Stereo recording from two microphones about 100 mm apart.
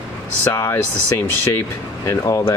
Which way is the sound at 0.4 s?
25° left (ahead or behind).